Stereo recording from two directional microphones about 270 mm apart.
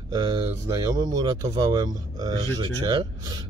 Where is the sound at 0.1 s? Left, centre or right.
Centre.